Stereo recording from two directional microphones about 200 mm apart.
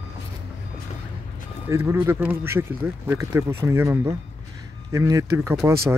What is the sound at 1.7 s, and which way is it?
Speech, 10° right (ahead or behind).